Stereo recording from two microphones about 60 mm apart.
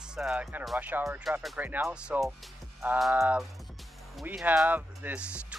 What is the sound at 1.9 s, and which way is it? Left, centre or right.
Speech, centre.